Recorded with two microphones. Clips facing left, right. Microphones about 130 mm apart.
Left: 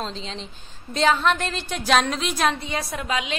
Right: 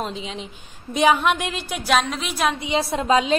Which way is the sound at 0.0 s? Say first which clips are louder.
Right 3 dB; 10° right (ahead or behind).